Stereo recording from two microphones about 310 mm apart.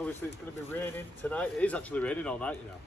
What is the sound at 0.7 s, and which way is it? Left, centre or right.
Speech, centre.